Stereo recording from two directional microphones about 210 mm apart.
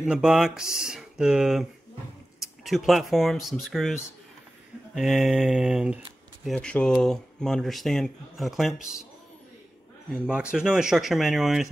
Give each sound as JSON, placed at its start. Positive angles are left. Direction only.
{"t": 0.0, "sound": "speech", "side_deg": -5}
{"t": 4.9, "sound": "speech", "side_deg": 0}
{"t": 10.1, "sound": "speech", "side_deg": -5}